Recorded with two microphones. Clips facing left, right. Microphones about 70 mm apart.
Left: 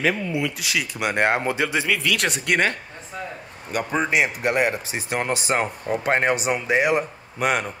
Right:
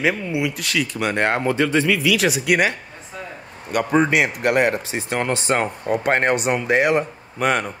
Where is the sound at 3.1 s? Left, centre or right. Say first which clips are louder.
Left 1 dB; centre.